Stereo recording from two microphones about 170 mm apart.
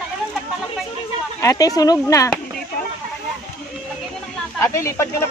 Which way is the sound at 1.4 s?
20° left (ahead or behind).